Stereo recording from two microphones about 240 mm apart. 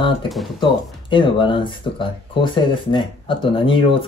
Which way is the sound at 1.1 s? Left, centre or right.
Left.